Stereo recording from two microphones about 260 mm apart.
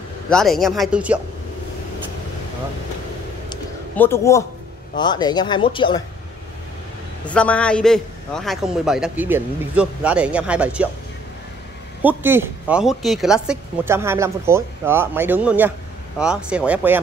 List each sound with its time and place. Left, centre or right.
0.3 s a man's voice: centre
3.9 s speech: centre
7.2 s a man's voice: centre
12.0 s a man's voice: centre